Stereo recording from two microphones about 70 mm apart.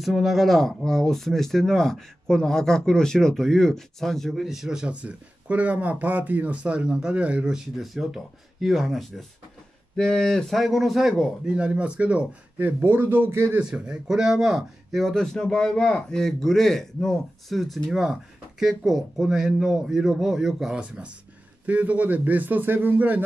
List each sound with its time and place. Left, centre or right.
0.0 s speech: centre
9.9 s speech: centre
11.5 s speech: centre; by 13.6 s right
13.6 s speech: centre
20.8 s speech: centre